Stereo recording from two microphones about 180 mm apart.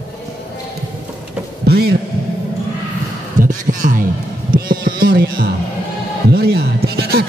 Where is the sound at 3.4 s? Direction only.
45° right (ahead or behind).